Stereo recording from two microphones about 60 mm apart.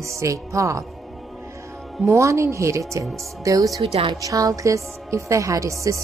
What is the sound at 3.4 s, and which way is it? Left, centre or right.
A woman's voice, right.